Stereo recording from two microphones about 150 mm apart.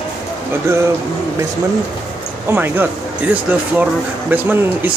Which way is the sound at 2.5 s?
15° right (ahead or behind).